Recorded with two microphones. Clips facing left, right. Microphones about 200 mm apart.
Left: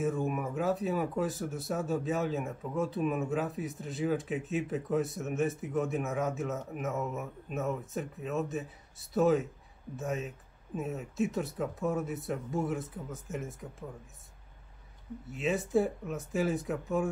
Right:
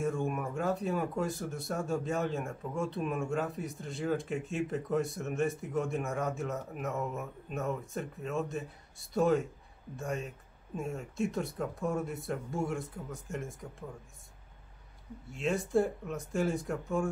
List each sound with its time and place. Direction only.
0.0 s speech: 5° left (ahead or behind)
15.3 s speech: 5° left (ahead or behind)